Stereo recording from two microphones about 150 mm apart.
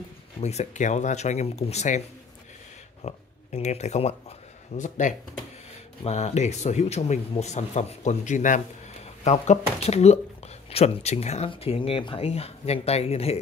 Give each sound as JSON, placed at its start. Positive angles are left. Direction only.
{"t": 0.4, "sound": "speech", "side_deg": 50}
{"t": 4.7, "sound": "speech", "side_deg": 55}